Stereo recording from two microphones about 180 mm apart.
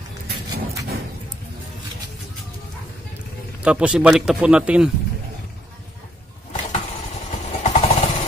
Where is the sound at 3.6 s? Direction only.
5° right (ahead or behind).